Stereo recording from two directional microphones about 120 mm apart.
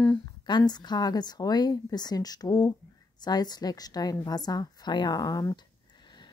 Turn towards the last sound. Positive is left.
turn(degrees=30)  # may be behind; listen again after turning